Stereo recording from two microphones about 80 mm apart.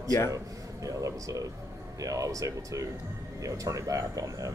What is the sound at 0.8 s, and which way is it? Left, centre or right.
Speech, right.